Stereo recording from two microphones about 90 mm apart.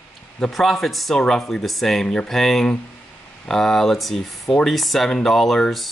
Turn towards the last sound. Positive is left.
turn(degrees=0)  # may be behind; listen again after turning